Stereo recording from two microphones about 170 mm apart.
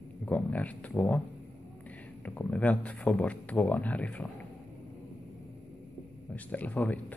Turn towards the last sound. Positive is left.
turn(degrees=10)  # may be behind; listen again after turning